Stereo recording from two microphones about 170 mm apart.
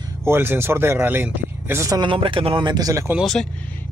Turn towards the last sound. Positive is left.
turn(degrees=0)  # may be behind; listen again after turning